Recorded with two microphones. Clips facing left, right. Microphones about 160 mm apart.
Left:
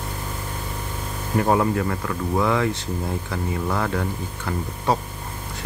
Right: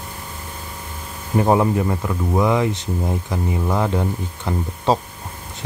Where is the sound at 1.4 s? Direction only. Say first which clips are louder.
Right 3 dB; 20° right (ahead or behind).